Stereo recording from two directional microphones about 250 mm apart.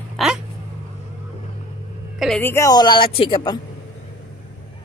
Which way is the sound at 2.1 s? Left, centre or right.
Centre.